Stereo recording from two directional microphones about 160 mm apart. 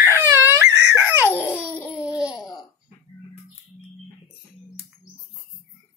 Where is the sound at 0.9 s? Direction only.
10° right (ahead or behind).